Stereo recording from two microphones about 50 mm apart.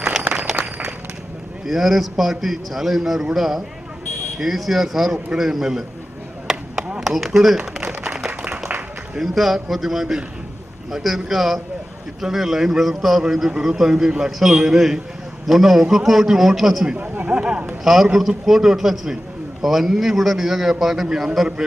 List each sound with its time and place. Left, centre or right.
0.3 s walk: centre
1.7 s a man's voice: centre
6.4 s chop: centre
7.0 s a sound: centre
9.3 s a man's voice: centre
17.3 s speech: centre
18.1 s a man's voice: centre